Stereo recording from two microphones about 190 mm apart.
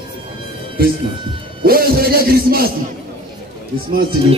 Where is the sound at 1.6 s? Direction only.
50° right (ahead or behind).